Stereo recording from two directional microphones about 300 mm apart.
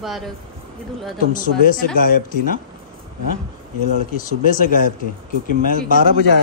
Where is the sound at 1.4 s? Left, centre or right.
Left.